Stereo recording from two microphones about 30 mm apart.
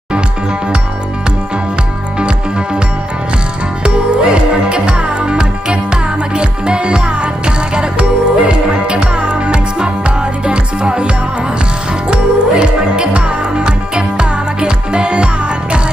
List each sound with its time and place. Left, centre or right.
2.1 s music: right
3.8 s music: right
12.1 s music: right